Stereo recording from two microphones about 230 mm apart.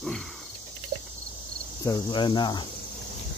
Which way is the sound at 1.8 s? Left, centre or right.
Centre.